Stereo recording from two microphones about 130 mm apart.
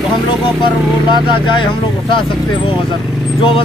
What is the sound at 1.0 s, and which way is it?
Speech, 35° left (ahead or behind).